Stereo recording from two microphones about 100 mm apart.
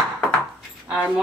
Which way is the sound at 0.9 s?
10° right (ahead or behind).